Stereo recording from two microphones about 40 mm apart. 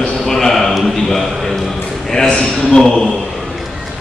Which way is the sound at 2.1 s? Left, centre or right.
Centre.